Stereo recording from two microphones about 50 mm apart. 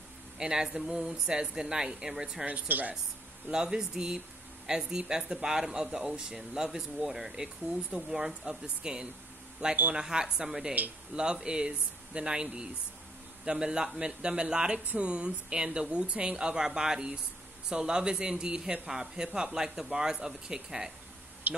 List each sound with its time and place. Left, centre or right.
0.4 s speech: centre
2.4 s speech: right
3.5 s speech: centre
11.1 s speech: right
21.5 s speech: right